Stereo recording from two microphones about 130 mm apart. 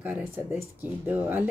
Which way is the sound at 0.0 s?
15° right (ahead or behind).